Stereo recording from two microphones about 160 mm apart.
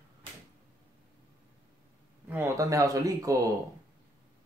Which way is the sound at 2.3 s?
15° right (ahead or behind).